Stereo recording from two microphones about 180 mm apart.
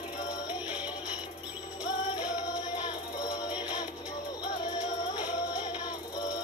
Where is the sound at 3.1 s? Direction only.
20° left (ahead or behind).